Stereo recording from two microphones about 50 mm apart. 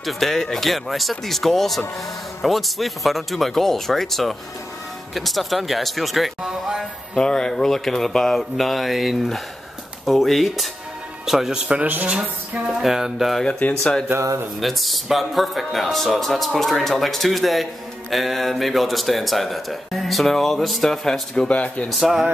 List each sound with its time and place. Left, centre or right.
0.0 s a man's voice: centre
7.2 s a man's voice: centre
11.5 s speech: right
12.8 s speech: centre
13.5 s speech: left
14.1 s speech: right
14.6 s a man's voice: centre
21.5 s speech: left